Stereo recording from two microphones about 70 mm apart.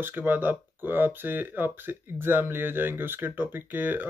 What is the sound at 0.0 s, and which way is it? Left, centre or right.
Speech, right.